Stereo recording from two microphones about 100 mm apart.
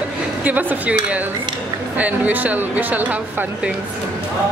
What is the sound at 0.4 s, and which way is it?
A woman's voice, 15° right (ahead or behind).